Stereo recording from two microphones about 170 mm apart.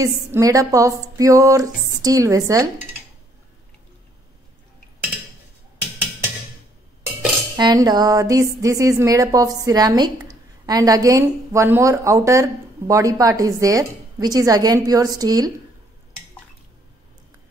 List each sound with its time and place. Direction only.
0.3 s a woman's voice: 20° right (ahead or behind)
7.5 s a woman's voice: 25° right (ahead or behind)